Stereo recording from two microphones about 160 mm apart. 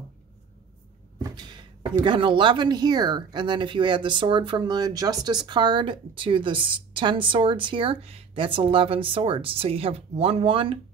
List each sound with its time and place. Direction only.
1.3 s speech: 30° right (ahead or behind)